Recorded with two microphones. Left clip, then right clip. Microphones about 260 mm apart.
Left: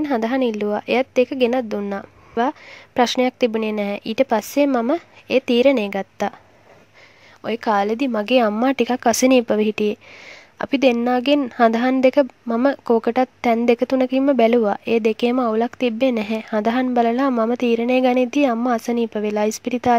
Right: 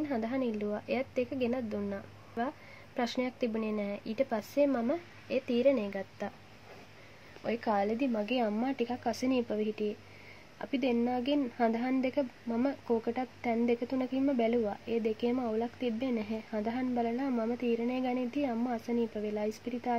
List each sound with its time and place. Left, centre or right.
0.0 s speech: left
7.4 s speech: left